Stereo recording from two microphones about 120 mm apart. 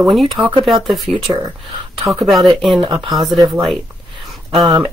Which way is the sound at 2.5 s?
Centre (ahead or behind).